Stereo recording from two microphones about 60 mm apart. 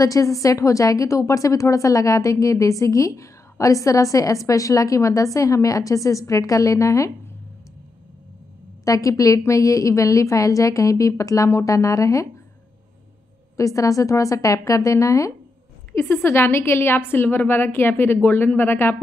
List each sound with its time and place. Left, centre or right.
0.0 s a woman's voice: left
8.8 s a woman's voice: left
13.6 s a woman's voice: left
15.9 s a woman's voice: left